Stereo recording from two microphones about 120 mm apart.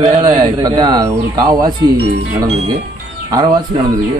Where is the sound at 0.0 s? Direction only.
35° right (ahead or behind).